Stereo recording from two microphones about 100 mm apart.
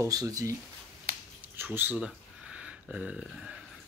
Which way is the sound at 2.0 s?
10° right (ahead or behind).